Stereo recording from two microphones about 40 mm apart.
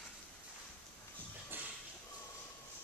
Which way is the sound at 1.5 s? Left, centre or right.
Right.